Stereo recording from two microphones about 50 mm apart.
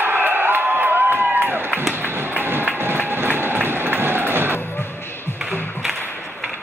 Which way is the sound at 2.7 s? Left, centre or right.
Right.